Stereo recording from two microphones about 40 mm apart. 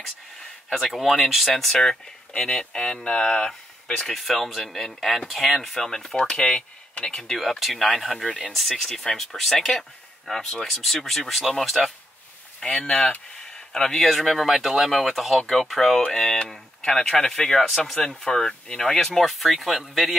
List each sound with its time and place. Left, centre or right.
0.7 s speech: centre
4.1 s speech: centre; by 7.2 s left
7.6 s speech: centre
12.6 s speech: centre
13.4 s a sound: centre
13.9 s speech: centre
18.7 s speech: left
18.9 s speech: centre